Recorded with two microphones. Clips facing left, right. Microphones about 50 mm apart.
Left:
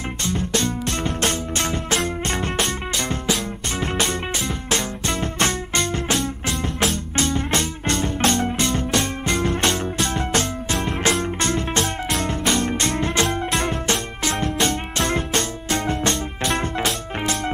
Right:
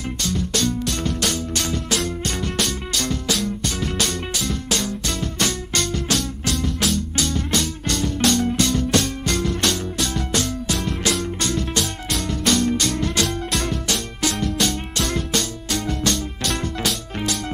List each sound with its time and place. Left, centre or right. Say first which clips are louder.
0.2 s music: even; left